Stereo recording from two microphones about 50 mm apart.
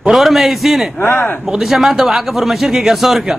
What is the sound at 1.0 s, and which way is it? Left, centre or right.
Speech, left.